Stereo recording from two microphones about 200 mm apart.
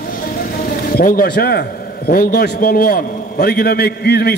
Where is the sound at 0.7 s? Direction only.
45° left (ahead or behind).